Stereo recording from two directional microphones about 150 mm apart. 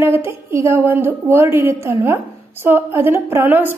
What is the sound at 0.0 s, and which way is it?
A woman's voice, 15° right (ahead or behind).